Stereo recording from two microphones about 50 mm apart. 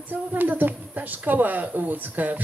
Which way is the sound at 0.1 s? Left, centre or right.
Right.